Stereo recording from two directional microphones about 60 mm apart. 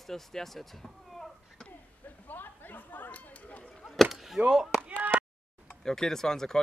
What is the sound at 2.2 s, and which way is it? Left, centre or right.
Chatter, left.